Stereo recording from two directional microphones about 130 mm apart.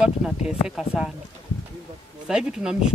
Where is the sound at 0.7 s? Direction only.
5° right (ahead or behind).